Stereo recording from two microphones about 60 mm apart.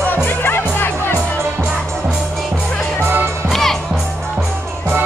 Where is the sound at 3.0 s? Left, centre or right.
Right.